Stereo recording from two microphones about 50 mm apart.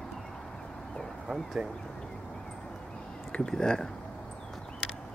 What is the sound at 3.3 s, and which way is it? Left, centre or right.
Speech, centre.